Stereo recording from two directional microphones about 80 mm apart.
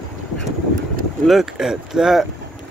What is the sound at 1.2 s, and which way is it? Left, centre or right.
Speech, centre.